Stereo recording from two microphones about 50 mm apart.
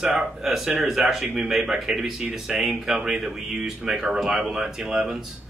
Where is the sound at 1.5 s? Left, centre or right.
Centre.